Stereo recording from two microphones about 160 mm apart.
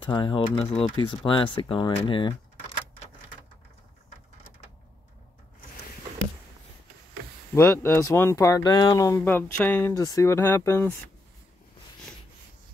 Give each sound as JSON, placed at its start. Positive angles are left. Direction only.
{"t": 0.0, "sound": "speech", "side_deg": 30}
{"t": 7.5, "sound": "speech", "side_deg": 15}